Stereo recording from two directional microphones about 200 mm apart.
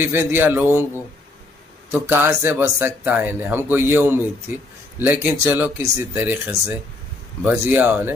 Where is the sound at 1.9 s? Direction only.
10° right (ahead or behind).